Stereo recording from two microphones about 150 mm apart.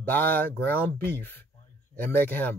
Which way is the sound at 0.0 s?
10° left (ahead or behind).